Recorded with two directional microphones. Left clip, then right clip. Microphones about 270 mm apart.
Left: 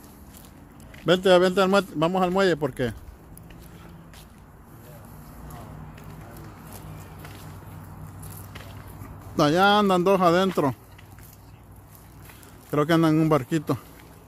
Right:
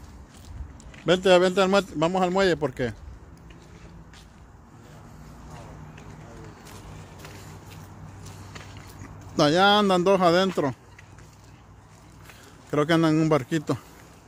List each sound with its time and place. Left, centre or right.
1.0 s a man's voice: centre
9.4 s a man's voice: centre
12.7 s a man's voice: centre